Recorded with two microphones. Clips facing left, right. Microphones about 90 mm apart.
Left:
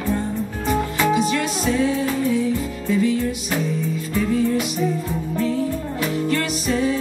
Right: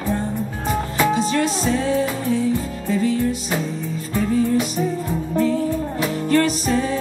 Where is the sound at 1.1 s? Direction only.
30° right (ahead or behind).